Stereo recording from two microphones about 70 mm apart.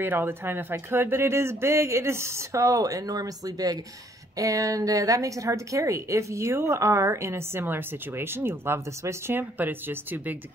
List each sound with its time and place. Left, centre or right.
0.0 s a woman's voice: right